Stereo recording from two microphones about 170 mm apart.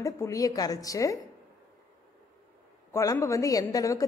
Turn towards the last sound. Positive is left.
turn(degrees=20)  # may be behind; listen again after turning